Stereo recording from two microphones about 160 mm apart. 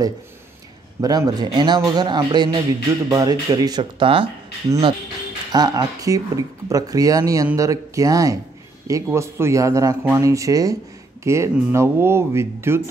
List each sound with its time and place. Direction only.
1.0 s speech: 25° right (ahead or behind)
4.6 s speech: 20° right (ahead or behind)